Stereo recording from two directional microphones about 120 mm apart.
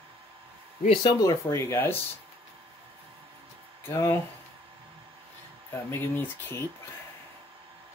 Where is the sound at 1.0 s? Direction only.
25° left (ahead or behind).